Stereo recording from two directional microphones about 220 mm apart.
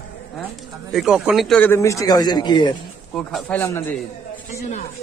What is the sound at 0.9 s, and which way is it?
Speech, 5° right (ahead or behind).